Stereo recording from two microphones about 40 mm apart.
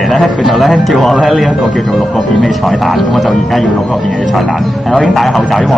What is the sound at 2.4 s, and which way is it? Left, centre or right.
Speech, centre.